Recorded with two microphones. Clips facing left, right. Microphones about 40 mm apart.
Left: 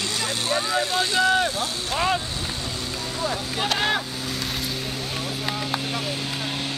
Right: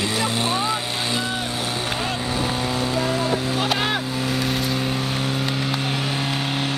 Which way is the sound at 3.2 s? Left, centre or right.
Right.